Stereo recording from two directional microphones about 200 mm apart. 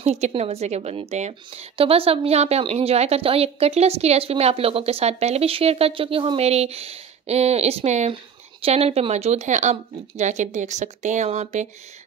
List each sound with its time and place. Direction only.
0.0 s a woman's voice: 30° right (ahead or behind)